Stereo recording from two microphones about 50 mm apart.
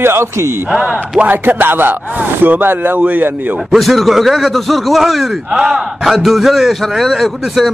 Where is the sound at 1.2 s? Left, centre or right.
Right.